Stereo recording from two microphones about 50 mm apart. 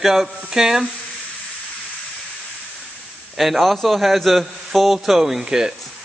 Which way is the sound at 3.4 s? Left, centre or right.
Centre.